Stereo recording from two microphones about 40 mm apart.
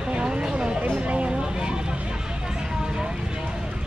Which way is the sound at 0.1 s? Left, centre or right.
Right.